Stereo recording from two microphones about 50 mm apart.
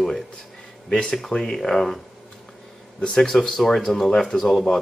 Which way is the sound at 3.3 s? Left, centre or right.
Centre.